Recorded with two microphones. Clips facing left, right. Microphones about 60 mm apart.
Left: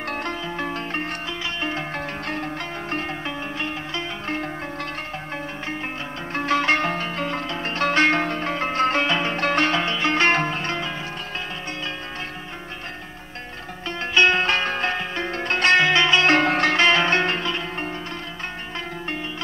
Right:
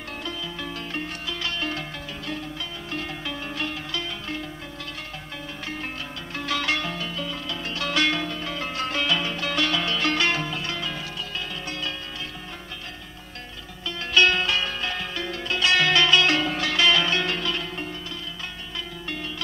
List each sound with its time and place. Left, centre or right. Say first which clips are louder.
0.1 s music: left 4 dB; left
1.6 s music: left 3 dB; left
2.0 s zither: left 5 dB; left
3.3 s music: left 2 dB; left
6.3 s music: left 6 dB; left
10.1 s zither: left 5 dB; left
14.1 s zither: left 2 dB; left
15.8 s music: left 2 dB; left
16.3 s sitar: left 6 dB; left